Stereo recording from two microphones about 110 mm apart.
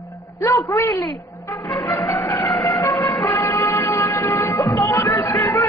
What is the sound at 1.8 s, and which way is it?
Music, 35° left (ahead or behind).